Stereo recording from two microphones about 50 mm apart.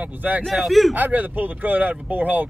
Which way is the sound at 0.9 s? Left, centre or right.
Right.